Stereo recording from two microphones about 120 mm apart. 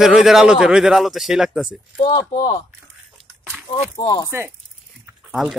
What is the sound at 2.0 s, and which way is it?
Speech, 35° left (ahead or behind).